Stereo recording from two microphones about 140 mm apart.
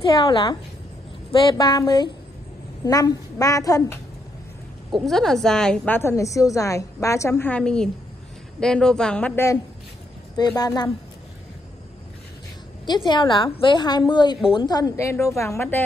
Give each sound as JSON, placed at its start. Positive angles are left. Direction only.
{"t": 0.1, "sound": "a woman's voice", "side_deg": 30}
{"t": 5.0, "sound": "a woman's voice", "side_deg": 0}
{"t": 10.6, "sound": "a woman's voice", "side_deg": 30}
{"t": 12.8, "sound": "a woman's voice", "side_deg": 30}